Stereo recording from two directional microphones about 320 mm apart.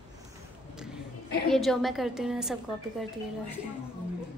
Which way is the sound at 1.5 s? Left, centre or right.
Centre.